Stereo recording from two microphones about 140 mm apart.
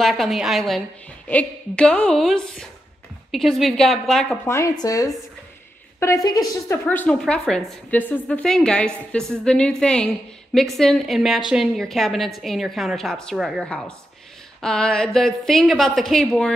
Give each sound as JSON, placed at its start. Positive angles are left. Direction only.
{"t": 0.0, "sound": "a woman's voice", "side_deg": 0}
{"t": 4.5, "sound": "a woman's voice", "side_deg": 20}
{"t": 6.9, "sound": "a woman's voice", "side_deg": 15}
{"t": 13.7, "sound": "a woman's voice", "side_deg": 10}